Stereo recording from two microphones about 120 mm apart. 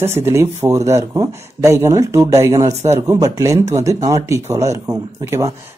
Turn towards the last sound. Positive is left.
turn(degrees=-25)  # may be behind; listen again after turning